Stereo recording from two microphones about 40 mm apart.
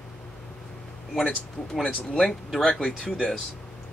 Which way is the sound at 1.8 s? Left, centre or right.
Left.